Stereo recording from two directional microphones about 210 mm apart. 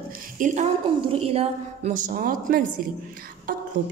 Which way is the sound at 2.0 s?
40° right (ahead or behind).